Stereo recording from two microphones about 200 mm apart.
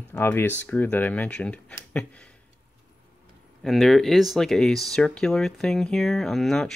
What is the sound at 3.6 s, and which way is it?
Speech, centre (ahead or behind).